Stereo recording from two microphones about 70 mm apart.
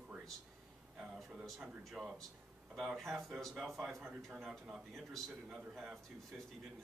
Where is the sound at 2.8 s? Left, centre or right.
Centre.